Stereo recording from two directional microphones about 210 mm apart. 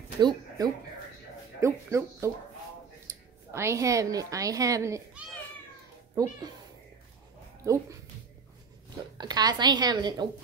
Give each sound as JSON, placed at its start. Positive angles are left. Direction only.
{"t": 0.2, "sound": "speech", "side_deg": -20}
{"t": 3.5, "sound": "speech", "side_deg": -15}
{"t": 9.2, "sound": "a woman's voice", "side_deg": -20}